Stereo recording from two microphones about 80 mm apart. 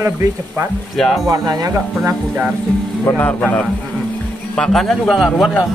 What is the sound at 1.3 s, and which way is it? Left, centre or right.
Speech, right.